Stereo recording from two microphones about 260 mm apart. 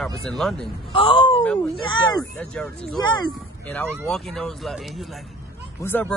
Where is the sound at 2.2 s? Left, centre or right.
Centre.